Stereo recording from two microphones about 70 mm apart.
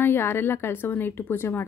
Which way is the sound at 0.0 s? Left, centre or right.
Left.